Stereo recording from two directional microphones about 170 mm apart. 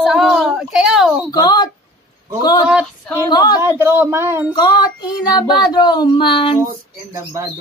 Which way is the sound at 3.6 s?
15° right (ahead or behind).